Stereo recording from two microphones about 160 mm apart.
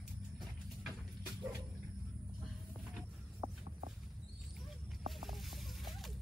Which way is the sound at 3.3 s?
30° right (ahead or behind).